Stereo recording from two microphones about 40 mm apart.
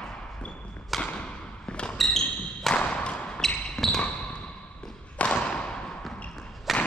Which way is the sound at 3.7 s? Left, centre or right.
Centre.